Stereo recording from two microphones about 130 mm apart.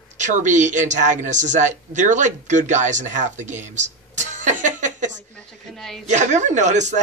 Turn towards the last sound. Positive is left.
turn(degrees=-65)  # may be behind; listen again after turning